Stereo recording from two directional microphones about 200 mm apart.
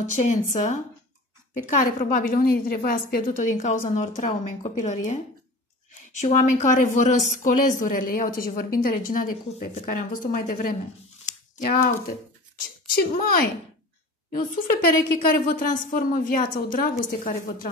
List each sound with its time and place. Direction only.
0.1 s speech: 40° left (ahead or behind)
1.9 s a woman's voice: 45° left (ahead or behind)
6.2 s a woman's voice: 40° left (ahead or behind)
11.2 s a sound: 40° left (ahead or behind)
12.5 s a woman's voice: 45° left (ahead or behind)